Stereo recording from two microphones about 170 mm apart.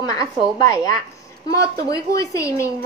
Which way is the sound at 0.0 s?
20° left (ahead or behind).